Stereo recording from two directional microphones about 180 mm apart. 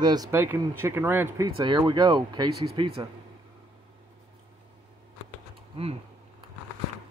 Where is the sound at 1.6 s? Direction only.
25° right (ahead or behind).